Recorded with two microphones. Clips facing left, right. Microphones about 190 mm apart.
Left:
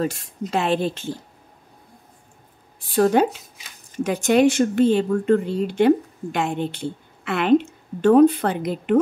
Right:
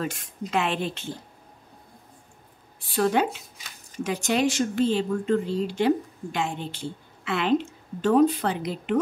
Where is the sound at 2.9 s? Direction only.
45° left (ahead or behind).